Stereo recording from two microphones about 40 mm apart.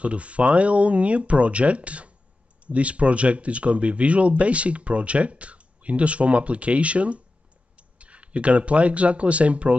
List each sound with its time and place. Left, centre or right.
0.0 s speech: right